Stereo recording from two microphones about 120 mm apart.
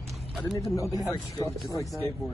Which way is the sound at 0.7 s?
25° left (ahead or behind).